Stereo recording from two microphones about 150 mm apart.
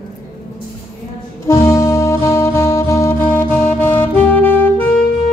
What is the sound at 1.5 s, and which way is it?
Music, 20° left (ahead or behind).